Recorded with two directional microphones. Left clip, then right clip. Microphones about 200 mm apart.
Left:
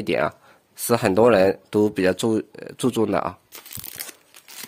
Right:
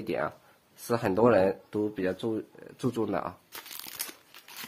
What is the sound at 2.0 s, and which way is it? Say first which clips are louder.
Speech: left 10 dB; 65° left (ahead or behind).